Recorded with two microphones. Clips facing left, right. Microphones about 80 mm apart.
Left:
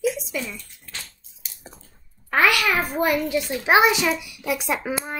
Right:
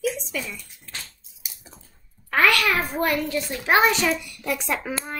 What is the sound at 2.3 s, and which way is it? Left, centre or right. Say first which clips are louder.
A woman's voice: left 1 dB; centre.